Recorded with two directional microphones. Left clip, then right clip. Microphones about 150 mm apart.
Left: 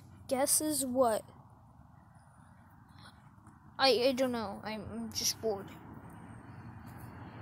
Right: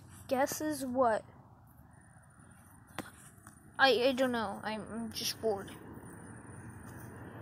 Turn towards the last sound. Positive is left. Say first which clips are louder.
# even
turn(degrees=-5)  # may be behind; listen again after turning